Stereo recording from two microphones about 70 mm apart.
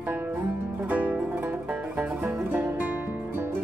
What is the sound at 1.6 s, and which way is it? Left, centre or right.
Music, centre.